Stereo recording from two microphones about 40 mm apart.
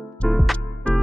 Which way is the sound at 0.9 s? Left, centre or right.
Left.